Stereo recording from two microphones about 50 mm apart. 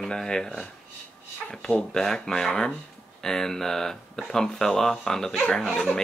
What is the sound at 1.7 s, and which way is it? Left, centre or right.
Speech, centre.